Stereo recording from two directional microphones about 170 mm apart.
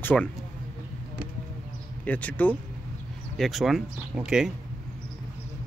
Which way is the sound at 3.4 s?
Centre (ahead or behind).